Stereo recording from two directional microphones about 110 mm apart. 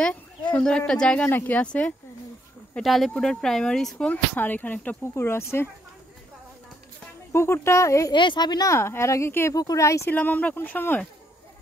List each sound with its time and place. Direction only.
0.5 s speech: 10° left (ahead or behind)
7.3 s speech: 25° left (ahead or behind)
8.1 s speech: 45° left (ahead or behind)
8.7 s speech: 25° left (ahead or behind)
10.1 s speech: 15° left (ahead or behind)